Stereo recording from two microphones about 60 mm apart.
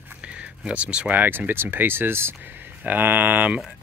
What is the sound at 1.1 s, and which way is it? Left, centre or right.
Speech, right.